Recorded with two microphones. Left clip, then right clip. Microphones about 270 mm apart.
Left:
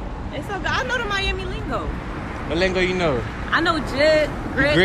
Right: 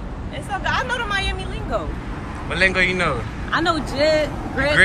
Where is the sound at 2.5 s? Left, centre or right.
Centre.